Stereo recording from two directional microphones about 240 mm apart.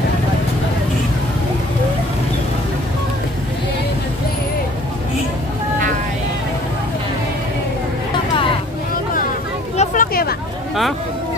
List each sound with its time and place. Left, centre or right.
9.8 s vehicle: left